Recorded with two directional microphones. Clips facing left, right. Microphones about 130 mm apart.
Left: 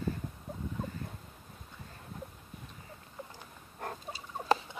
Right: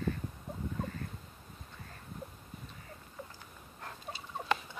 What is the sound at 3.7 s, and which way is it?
Fowl, 40° left (ahead or behind).